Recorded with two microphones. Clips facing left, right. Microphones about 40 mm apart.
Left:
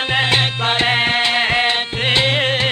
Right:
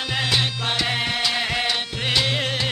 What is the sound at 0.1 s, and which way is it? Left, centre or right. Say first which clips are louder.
Music: left 6 dB; left.